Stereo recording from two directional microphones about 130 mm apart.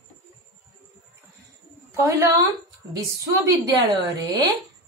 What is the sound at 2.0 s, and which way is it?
A woman's voice, 25° right (ahead or behind).